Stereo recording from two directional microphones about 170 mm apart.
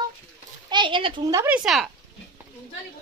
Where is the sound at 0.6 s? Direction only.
30° right (ahead or behind).